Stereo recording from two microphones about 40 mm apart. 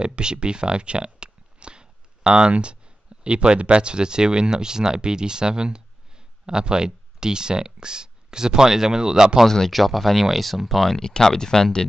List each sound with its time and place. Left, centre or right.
0.0 s a sound: right
3.3 s speech: right
9.7 s speech: centre